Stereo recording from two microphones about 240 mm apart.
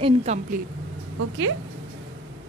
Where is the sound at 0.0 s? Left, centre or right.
Right.